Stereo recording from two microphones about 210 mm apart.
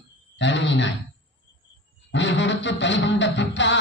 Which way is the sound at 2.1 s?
60° left (ahead or behind).